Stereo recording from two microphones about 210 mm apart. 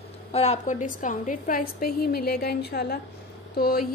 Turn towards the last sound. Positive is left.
turn(degrees=45)  # may be behind; listen again after turning